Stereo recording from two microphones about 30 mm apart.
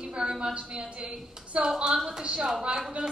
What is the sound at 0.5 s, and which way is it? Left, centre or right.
Speech, right.